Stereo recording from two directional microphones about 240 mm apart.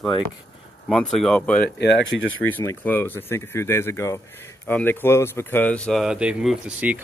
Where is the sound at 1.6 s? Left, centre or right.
Left.